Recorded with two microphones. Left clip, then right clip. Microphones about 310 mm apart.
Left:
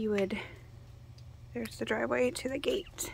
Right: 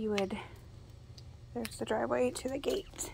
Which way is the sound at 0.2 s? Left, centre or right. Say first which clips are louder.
Left 3 dB; centre.